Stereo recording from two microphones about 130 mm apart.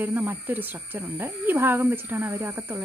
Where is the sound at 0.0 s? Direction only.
15° right (ahead or behind).